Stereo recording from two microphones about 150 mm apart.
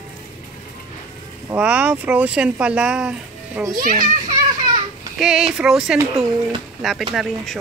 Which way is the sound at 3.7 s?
65° right (ahead or behind).